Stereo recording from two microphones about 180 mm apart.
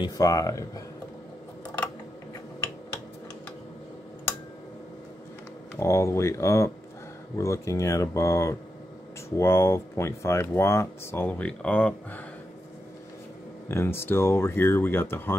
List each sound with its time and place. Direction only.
0.0 s speech: 20° left (ahead or behind)
5.8 s speech: 15° left (ahead or behind)
13.7 s speech: 15° left (ahead or behind)